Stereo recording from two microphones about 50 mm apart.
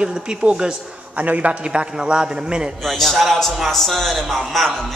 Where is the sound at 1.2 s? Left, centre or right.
Right.